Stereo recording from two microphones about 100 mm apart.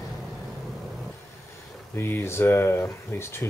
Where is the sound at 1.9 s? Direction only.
25° left (ahead or behind).